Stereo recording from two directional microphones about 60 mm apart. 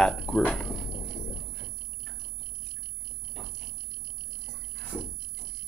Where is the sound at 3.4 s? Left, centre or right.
Centre.